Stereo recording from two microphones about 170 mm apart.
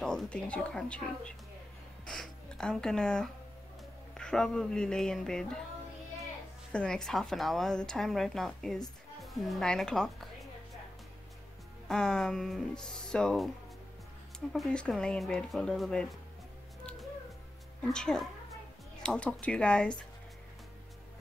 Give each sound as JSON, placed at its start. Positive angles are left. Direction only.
{"t": 0.0, "sound": "a woman's voice", "side_deg": 5}
{"t": 6.7, "sound": "a woman's voice", "side_deg": 5}
{"t": 11.9, "sound": "a woman's voice", "side_deg": 5}
{"t": 14.5, "sound": "a woman's voice", "side_deg": 5}
{"t": 17.8, "sound": "speech", "side_deg": 5}